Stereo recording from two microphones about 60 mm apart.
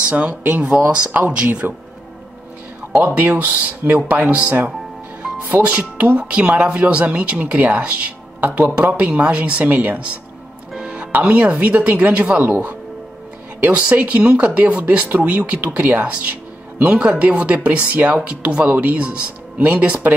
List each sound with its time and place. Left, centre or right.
0.0 s speech: right
3.0 s speech: right
10.7 s music: centre
11.1 s speech: right
12.4 s speech: right
13.6 s speech: right
16.3 s music: right
16.9 s speech: right